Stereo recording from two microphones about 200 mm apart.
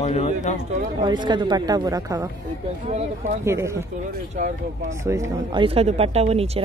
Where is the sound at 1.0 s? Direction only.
20° right (ahead or behind).